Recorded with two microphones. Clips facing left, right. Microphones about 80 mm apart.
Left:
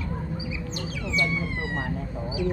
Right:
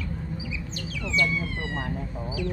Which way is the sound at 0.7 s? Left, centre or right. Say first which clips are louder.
Right 1 dB; left.